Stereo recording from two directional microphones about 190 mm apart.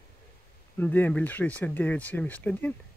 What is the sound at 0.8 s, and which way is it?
Speech, 10° left (ahead or behind).